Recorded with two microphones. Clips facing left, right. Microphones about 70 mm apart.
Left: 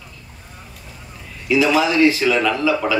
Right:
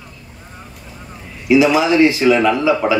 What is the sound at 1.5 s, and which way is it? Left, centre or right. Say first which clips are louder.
A man's voice: right 4 dB; centre.